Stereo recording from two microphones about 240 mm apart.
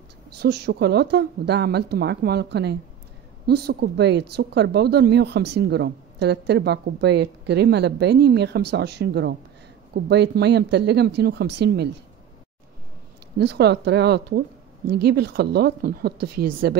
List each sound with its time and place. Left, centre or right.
0.4 s speech: right
13.4 s a woman's voice: right